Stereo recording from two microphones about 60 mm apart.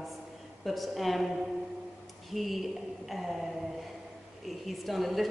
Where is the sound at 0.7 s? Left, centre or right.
Centre.